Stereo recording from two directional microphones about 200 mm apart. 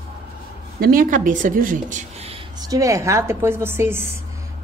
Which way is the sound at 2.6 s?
15° right (ahead or behind).